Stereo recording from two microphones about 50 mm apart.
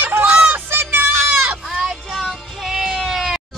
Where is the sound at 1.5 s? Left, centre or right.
Centre.